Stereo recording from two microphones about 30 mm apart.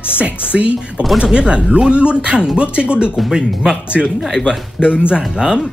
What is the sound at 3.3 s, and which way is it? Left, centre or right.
Speech, right.